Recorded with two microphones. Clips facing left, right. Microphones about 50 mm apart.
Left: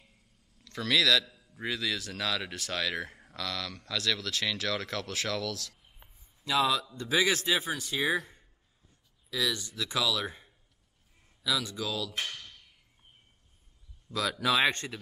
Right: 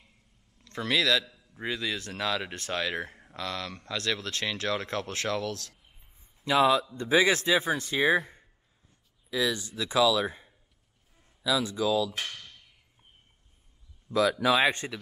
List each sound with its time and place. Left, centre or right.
0.7 s a man's voice: right
11.7 s speech: centre
12.3 s a sound: centre
14.1 s speech: centre